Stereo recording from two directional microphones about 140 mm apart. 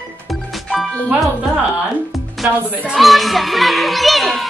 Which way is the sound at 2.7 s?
5° right (ahead or behind).